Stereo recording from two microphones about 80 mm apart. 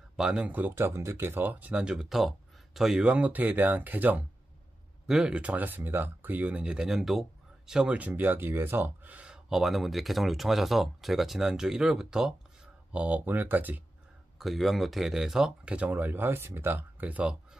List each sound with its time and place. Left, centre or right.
0.1 s speech: centre
3.1 s speech: centre
5.0 s speech: centre
5.4 s speech: right
8.0 s speech: right; by 12.4 s centre
12.9 s speech: centre
14.4 s speech: centre